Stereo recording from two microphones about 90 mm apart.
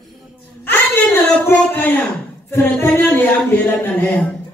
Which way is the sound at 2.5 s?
25° left (ahead or behind).